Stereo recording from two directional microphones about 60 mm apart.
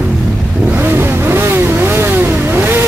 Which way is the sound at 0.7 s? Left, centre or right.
Right.